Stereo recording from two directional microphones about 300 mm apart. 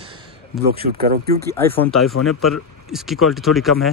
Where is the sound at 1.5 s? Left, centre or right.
Centre.